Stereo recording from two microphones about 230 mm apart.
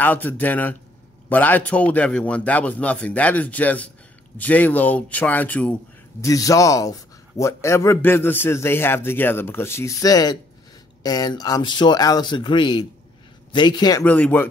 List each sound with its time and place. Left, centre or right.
0.0 s speech: centre